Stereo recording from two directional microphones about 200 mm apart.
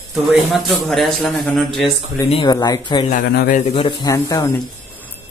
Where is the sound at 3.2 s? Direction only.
50° left (ahead or behind).